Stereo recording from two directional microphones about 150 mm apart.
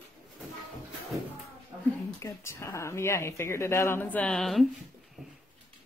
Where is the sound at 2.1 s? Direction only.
20° left (ahead or behind); by 4.7 s centre (ahead or behind).